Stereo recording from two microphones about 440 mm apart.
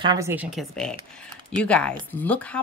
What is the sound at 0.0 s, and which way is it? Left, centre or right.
A woman's voice, centre.